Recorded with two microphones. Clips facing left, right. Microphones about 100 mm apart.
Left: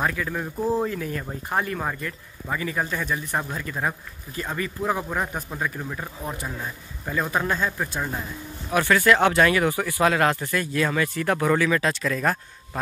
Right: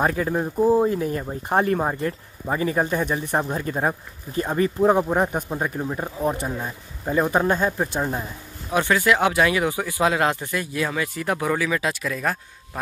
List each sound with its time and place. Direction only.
0.0 s speech: 35° right (ahead or behind); by 12.4 s 5° right (ahead or behind)